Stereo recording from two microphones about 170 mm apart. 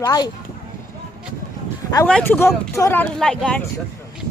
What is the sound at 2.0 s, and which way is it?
Speech, 10° left (ahead or behind).